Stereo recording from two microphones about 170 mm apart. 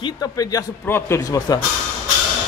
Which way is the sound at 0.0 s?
20° left (ahead or behind).